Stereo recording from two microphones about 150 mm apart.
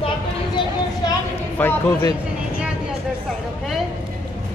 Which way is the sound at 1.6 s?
10° left (ahead or behind).